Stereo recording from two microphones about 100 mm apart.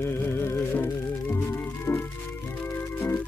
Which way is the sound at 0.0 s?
25° left (ahead or behind).